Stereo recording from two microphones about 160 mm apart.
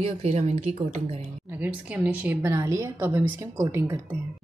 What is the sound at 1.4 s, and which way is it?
A woman's voice, 10° right (ahead or behind).